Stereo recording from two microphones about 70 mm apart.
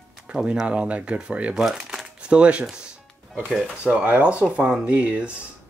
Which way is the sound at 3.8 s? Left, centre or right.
Centre.